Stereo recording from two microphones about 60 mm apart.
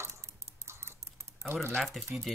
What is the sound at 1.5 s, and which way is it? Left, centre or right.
Speech, right.